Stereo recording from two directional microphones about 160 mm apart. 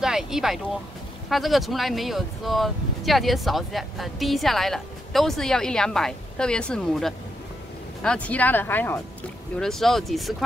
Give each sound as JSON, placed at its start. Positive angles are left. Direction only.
{"t": 0.0, "sound": "speech", "side_deg": -5}
{"t": 9.6, "sound": "speech", "side_deg": 0}